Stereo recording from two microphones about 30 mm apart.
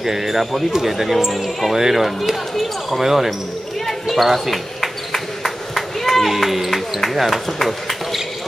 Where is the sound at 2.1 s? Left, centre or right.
Centre.